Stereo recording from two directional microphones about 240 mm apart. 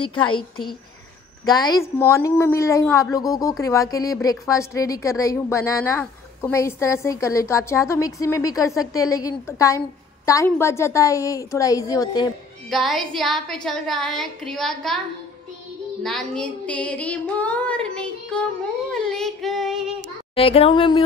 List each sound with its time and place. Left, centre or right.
0.0 s a woman's voice: left
1.4 s a woman's voice: centre
12.6 s female singing: centre
16.0 s female singing: centre
18.9 s child singing: centre
20.3 s a woman's voice: left